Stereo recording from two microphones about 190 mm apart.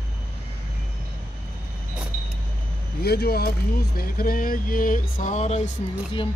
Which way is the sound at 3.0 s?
55° left (ahead or behind).